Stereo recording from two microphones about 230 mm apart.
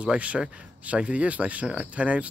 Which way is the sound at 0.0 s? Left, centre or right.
Centre.